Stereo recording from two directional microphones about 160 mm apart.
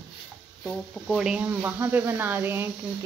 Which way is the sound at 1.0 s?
5° right (ahead or behind).